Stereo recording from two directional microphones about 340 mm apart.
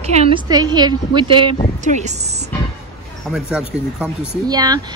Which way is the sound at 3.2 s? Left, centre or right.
Centre.